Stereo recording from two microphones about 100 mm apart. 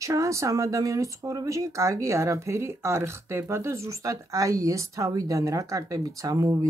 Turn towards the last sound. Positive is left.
turn(degrees=-35)  # may be behind; listen again after turning